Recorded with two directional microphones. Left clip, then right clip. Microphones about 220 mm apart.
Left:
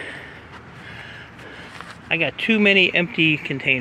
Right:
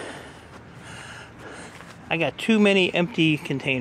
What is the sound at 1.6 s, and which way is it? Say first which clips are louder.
Speech: left 4 dB; 20° right (ahead or behind).